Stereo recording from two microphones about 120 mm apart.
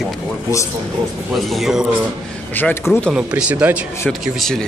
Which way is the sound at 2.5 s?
15° left (ahead or behind).